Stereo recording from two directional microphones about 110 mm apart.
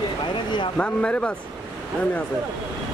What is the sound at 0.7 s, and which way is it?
Speech, 10° left (ahead or behind).